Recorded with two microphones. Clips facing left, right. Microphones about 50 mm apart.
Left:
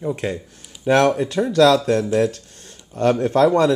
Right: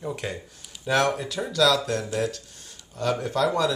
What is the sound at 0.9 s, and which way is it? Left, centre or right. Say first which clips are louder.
Speech: left 7 dB; left.